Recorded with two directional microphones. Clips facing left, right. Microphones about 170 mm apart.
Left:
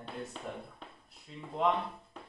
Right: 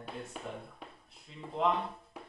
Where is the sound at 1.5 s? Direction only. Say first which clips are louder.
Even; centre (ahead or behind).